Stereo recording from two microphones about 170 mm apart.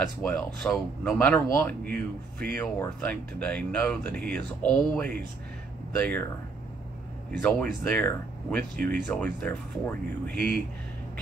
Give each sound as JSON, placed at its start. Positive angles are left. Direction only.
{"t": 0.2, "sound": "speech", "side_deg": 5}
{"t": 7.4, "sound": "speech", "side_deg": 10}